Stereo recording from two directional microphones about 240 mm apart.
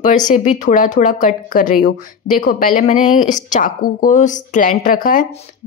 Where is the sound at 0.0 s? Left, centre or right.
Left.